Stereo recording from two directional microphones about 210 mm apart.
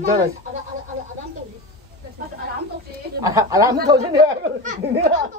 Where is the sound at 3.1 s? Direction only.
15° right (ahead or behind).